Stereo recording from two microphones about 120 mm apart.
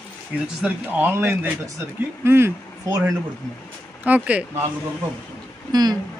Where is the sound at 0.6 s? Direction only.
10° right (ahead or behind).